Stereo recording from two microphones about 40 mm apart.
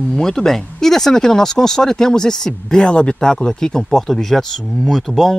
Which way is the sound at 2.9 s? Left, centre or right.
Left.